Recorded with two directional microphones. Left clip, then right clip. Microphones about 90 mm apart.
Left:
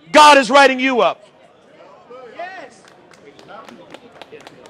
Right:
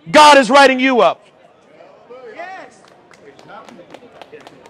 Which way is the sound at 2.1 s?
20° left (ahead or behind).